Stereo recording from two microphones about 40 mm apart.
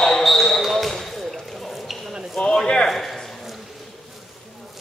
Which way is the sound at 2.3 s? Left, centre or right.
Centre.